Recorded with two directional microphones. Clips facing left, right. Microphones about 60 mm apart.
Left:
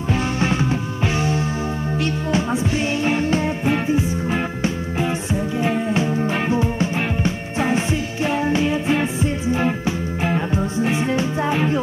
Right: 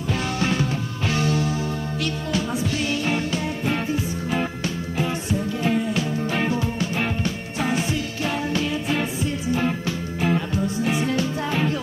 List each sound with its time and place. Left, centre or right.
0.4 s music: left
2.3 s music: left